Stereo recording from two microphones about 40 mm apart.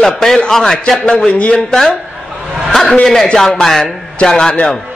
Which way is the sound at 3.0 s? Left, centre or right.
Centre.